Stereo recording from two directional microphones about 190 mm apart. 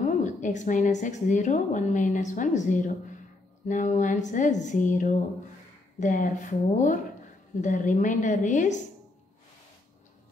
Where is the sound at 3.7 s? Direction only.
40° left (ahead or behind).